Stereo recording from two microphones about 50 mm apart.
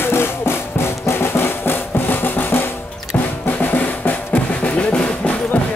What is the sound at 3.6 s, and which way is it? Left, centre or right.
Drum, left.